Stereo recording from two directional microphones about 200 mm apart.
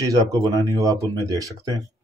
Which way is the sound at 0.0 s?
20° right (ahead or behind).